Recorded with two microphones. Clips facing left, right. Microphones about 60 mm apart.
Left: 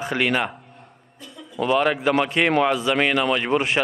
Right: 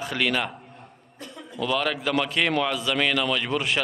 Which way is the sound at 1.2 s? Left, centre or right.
Right.